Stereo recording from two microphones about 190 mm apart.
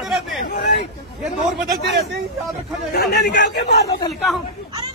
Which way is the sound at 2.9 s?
60° left (ahead or behind).